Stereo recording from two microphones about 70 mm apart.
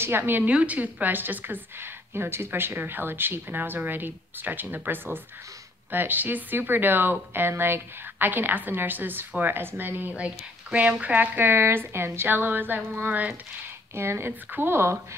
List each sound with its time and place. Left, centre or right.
0.0 s speech: right
0.5 s speech: centre; by 15.0 s right